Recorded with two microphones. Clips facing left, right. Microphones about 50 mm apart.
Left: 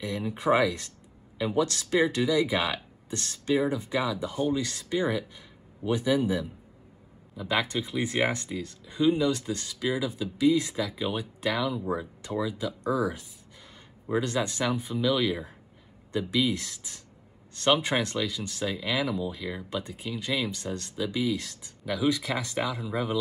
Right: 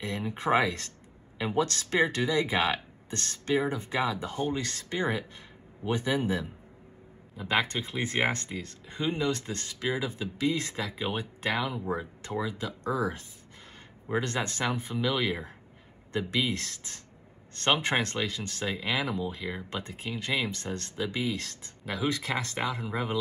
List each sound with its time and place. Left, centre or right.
0.0 s speech: right
7.6 s speech: right
8.2 s speech: centre
8.5 s speech: right
10.8 s speech: right
14.1 s speech: right
15.0 s speech: right
16.5 s speech: right
18.7 s speech: right
19.7 s speech: right
21.0 s speech: right